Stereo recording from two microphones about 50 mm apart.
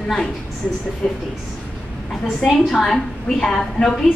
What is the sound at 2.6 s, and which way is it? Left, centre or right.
A woman's voice, centre.